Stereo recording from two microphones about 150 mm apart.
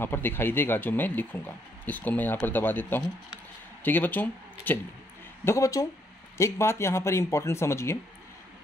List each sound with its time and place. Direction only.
0.0 s speech: 15° left (ahead or behind)